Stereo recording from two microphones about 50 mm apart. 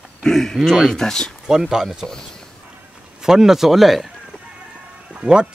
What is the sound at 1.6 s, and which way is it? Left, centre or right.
Speech, centre.